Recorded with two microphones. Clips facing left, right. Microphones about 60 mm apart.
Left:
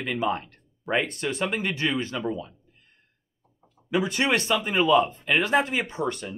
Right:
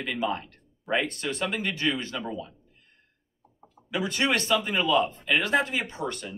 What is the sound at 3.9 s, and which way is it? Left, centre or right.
Speech, left.